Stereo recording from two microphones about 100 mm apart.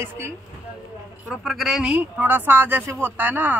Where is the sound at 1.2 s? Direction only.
Centre (ahead or behind).